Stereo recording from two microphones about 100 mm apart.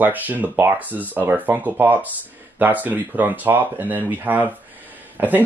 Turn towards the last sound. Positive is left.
turn(degrees=-20)  # may be behind; listen again after turning